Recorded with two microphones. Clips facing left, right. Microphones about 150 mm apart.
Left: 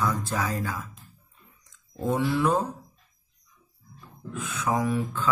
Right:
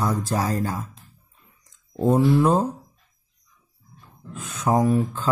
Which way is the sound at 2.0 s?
35° right (ahead or behind).